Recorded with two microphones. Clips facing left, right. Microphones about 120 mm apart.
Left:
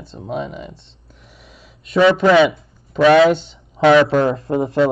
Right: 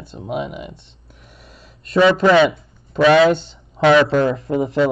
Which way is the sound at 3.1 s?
Centre (ahead or behind).